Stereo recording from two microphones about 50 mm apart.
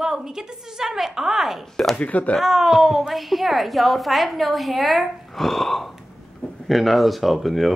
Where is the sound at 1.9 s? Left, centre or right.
Left.